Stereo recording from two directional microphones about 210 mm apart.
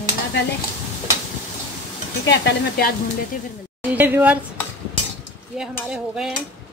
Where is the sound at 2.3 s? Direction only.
50° left (ahead or behind).